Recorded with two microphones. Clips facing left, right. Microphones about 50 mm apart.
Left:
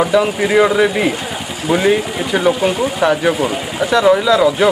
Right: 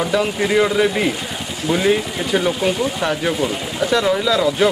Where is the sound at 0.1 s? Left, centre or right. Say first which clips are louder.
Left 4 dB; centre.